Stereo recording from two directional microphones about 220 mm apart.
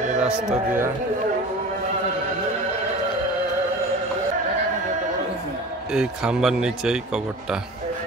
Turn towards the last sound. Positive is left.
turn(degrees=0)  # may be behind; listen again after turning